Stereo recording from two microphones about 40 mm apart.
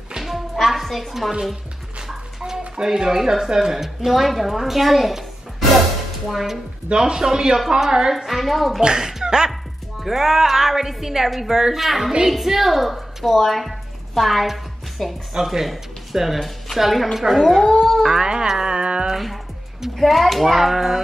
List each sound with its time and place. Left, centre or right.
0.2 s music: centre
2.0 s music: centre
2.7 s a woman's voice: centre
6.9 s speech: centre
8.3 s speech: centre
8.8 s a child's voice: centre
9.5 s a woman's voice: centre
18.0 s speech: centre
18.5 s music: centre
19.1 s a child's voice: centre